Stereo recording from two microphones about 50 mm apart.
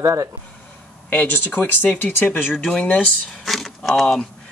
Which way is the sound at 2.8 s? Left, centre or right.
Left.